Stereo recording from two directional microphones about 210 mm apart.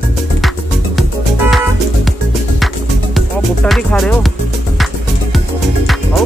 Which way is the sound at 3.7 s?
Centre (ahead or behind).